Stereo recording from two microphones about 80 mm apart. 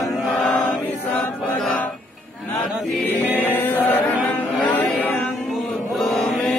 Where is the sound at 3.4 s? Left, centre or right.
Left.